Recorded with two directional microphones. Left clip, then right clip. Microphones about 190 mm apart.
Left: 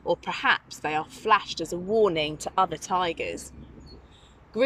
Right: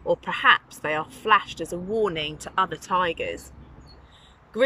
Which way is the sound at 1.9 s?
15° left (ahead or behind).